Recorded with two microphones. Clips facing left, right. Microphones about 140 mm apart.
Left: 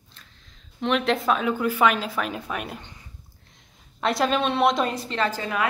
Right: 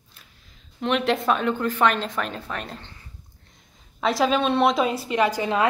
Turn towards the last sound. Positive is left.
turn(degrees=-15)  # may be behind; listen again after turning